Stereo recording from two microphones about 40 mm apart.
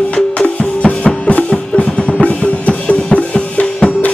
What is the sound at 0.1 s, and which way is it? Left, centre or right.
Music, left.